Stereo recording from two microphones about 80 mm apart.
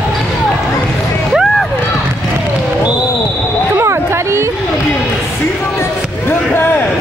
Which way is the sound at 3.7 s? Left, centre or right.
Right.